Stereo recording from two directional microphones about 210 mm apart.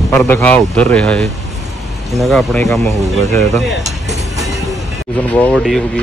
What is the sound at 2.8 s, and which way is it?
Speech, 30° right (ahead or behind).